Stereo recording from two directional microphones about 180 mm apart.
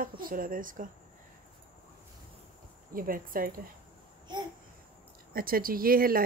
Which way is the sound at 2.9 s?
50° right (ahead or behind).